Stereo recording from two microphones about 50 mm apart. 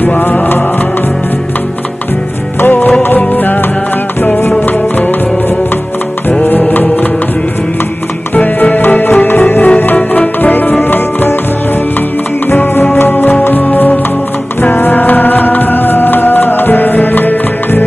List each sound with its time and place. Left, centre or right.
0.0 s music: left
2.6 s music: left
6.6 s music: left
8.4 s music: left
12.7 s music: left